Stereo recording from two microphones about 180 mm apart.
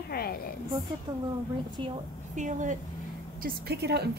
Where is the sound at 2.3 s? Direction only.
45° right (ahead or behind).